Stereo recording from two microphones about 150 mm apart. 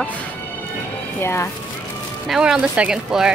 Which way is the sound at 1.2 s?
15° left (ahead or behind).